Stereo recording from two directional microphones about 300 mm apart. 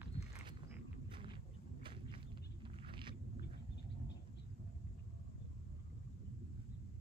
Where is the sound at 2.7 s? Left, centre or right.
Centre.